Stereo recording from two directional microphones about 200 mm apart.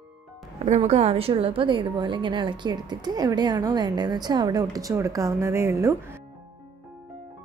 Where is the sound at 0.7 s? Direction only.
30° right (ahead or behind); by 6.1 s 15° right (ahead or behind).